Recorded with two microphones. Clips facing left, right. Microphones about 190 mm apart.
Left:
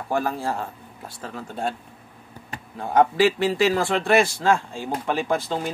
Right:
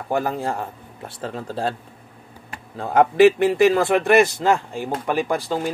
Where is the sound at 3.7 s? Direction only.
20° right (ahead or behind).